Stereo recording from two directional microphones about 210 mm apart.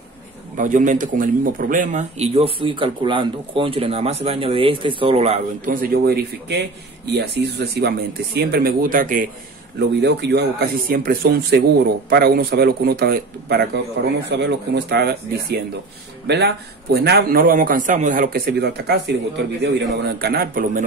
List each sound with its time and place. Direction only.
0.6 s a man's voice: 40° right (ahead or behind)
9.8 s a man's voice: 55° right (ahead or behind)
14.0 s a man's voice: 60° right (ahead or behind)